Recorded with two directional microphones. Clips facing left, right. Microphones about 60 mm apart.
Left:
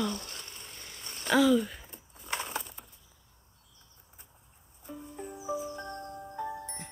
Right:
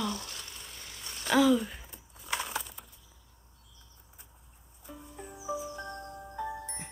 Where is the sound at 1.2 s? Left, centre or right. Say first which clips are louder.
Even; centre.